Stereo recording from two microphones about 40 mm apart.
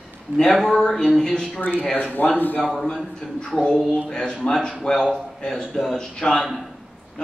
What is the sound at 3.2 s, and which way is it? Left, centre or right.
Speech, centre.